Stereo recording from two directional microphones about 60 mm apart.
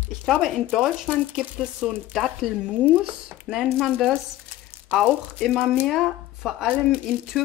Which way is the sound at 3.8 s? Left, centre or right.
Centre.